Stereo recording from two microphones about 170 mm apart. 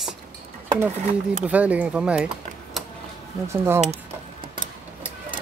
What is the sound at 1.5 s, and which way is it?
Speech, 10° right (ahead or behind).